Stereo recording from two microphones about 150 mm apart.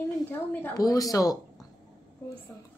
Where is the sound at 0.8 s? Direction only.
25° left (ahead or behind).